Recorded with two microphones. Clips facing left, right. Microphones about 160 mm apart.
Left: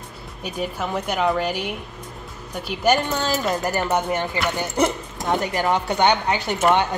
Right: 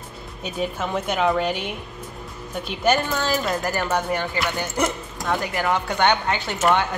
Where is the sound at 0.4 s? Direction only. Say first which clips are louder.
Even; 10° left (ahead or behind).